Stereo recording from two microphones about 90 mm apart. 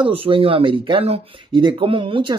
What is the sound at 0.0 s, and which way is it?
Speech, 80° right.